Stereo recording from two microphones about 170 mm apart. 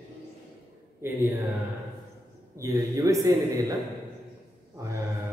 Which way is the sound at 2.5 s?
20° right (ahead or behind).